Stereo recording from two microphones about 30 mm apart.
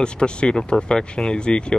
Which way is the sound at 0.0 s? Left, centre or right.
Left.